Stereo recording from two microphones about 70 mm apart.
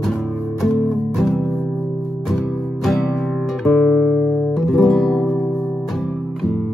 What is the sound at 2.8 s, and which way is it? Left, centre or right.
Music, centre.